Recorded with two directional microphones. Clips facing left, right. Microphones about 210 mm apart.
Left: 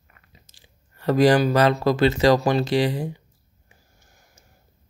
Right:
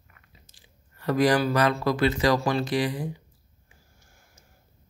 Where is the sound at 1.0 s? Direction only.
30° left (ahead or behind).